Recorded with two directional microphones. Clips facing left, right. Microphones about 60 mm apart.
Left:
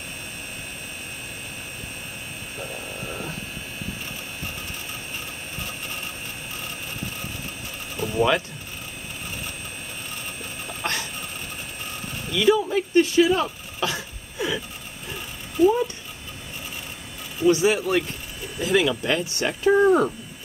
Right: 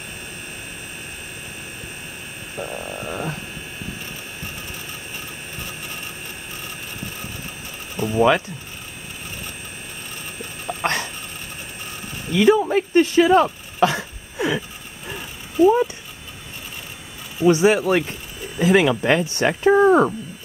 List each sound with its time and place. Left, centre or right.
3.1 s a sound: right
7.9 s sewing machine: centre
10.8 s dog: right
12.3 s speech: right
15.6 s speech: centre
17.5 s speech: right
18.6 s speech: right